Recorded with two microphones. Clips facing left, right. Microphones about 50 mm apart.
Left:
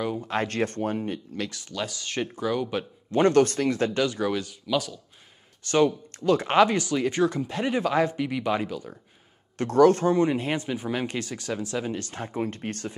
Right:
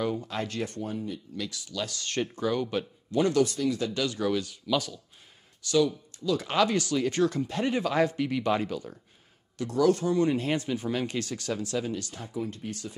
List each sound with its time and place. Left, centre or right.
0.2 s speech: left
0.5 s speech: left
1.4 s speech: left
1.9 s speech: centre
3.1 s speech: left
4.0 s speech: left
4.5 s speech: centre
5.6 s speech: left
6.5 s speech: left
8.2 s speech: centre
9.6 s speech: left
10.1 s speech: left
12.0 s speech: left